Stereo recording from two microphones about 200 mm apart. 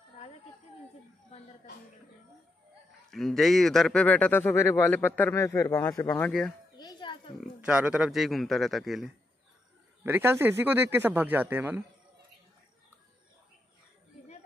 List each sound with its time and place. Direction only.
3.1 s speech: centre (ahead or behind)
6.8 s music: 20° left (ahead or behind)
7.3 s a man's voice: 5° right (ahead or behind)
10.0 s speech: 10° right (ahead or behind)